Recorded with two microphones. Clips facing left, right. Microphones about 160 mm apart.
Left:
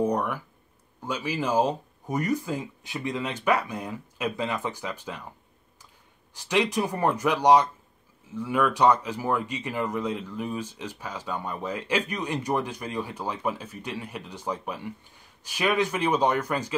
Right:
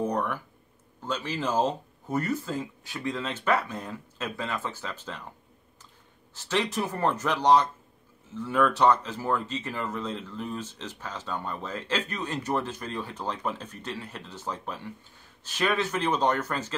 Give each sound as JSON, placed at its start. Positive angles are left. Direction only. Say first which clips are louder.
{"t": 0.0, "sound": "a sound", "louder": "left 3 dB", "side_deg": 10}
{"t": 1.0, "sound": "speech", "louder": "left 2 dB", "side_deg": 10}
{"t": 6.3, "sound": "speech", "louder": "left 3 dB", "side_deg": 15}